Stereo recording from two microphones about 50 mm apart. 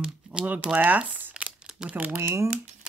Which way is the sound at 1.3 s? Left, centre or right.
Centre.